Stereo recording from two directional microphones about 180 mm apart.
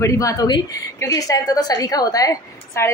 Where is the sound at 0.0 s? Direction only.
20° left (ahead or behind).